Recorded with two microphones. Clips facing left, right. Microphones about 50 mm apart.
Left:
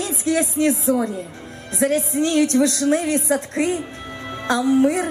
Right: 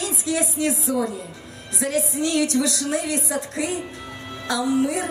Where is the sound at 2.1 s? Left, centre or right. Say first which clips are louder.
Left 4 dB; left.